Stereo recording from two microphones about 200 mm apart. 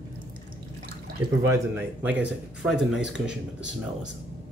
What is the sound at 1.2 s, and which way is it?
Speech, 15° right (ahead or behind).